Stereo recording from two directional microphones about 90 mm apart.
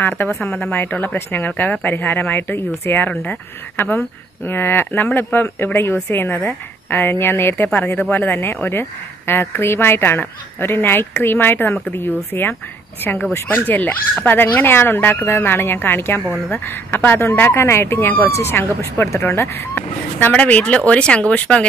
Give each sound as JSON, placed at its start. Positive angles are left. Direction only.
{"t": 0.3, "sound": "a woman's voice", "side_deg": 5}